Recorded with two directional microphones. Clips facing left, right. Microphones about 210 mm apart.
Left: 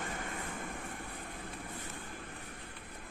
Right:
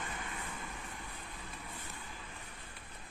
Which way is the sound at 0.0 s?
50° left (ahead or behind).